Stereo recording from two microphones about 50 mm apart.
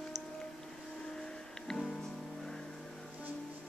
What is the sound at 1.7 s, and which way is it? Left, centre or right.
Music, centre.